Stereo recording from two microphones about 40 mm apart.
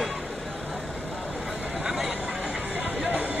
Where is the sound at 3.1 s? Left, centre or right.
Right.